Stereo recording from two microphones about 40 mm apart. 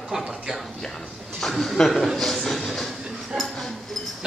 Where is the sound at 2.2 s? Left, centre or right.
Centre.